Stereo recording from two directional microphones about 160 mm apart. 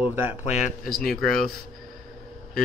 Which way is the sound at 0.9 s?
70° left (ahead or behind).